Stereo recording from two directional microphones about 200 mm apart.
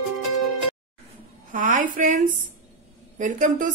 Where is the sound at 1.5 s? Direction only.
40° right (ahead or behind).